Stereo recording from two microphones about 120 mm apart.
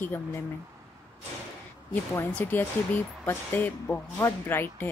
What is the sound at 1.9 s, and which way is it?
A woman's voice, 15° left (ahead or behind).